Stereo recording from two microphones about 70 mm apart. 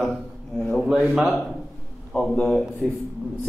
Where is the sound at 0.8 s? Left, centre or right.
Centre.